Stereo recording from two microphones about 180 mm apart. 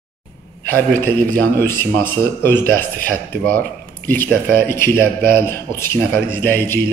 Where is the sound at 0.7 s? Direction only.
10° left (ahead or behind).